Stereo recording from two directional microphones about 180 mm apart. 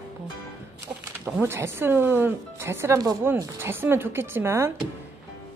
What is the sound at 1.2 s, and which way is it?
Speech, 10° right (ahead or behind).